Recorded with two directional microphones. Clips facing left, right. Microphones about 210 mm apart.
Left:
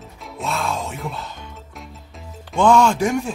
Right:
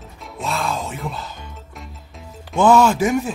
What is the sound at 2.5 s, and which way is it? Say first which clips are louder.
Speech: right 1 dB; 5° right (ahead or behind).